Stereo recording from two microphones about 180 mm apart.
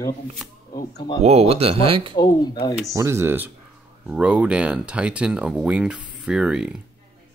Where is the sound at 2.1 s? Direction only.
20° left (ahead or behind).